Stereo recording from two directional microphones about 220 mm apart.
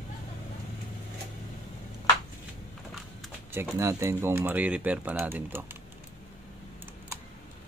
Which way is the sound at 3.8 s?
15° right (ahead or behind).